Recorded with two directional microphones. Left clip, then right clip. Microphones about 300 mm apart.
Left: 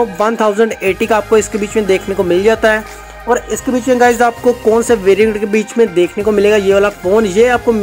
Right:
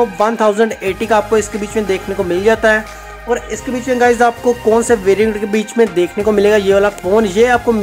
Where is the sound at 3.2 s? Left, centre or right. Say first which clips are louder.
Left 4 dB; centre.